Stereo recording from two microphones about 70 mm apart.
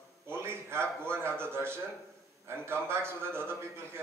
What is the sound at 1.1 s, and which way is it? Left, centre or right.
A man's voice, right.